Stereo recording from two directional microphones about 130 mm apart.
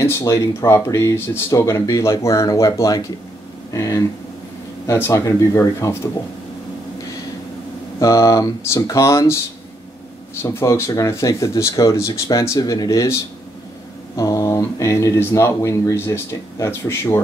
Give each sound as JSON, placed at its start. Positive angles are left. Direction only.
{"t": 0.0, "sound": "speech", "side_deg": 20}
{"t": 8.0, "sound": "speech", "side_deg": 25}
{"t": 10.4, "sound": "speech", "side_deg": 20}